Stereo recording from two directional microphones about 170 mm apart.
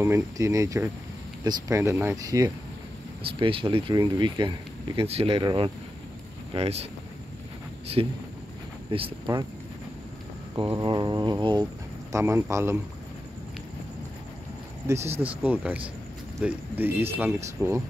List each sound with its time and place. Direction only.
0.0 s speech: 15° right (ahead or behind)
3.3 s speech: 30° right (ahead or behind)
8.0 s speech: 30° right (ahead or behind)
10.5 s speech: 25° right (ahead or behind)
12.1 s speech: 15° right (ahead or behind)
15.1 s speech: 10° right (ahead or behind)